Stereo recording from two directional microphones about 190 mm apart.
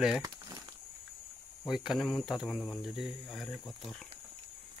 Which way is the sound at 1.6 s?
Centre (ahead or behind).